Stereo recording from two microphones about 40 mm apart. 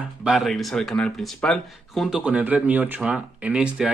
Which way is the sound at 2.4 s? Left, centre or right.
Right.